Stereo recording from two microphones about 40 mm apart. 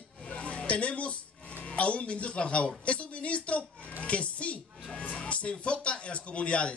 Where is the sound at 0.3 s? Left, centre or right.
Left.